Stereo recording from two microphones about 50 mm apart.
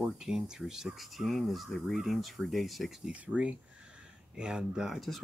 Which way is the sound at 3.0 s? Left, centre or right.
Right.